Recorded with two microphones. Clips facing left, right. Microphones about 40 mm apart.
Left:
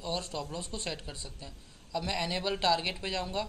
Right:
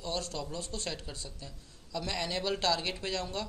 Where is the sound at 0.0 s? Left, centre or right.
Centre.